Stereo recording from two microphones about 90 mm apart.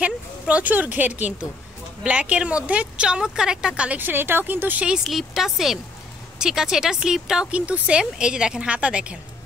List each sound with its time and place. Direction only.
0.0 s a woman's voice: 15° right (ahead or behind)
5.0 s a woman's voice: 5° right (ahead or behind)